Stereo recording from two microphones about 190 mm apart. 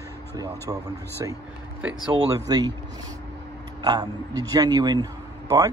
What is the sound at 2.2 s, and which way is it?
Speech, 15° right (ahead or behind).